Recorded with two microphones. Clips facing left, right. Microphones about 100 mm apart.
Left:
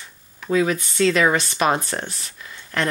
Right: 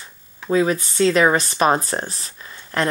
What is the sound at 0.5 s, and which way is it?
Speech, 30° right (ahead or behind).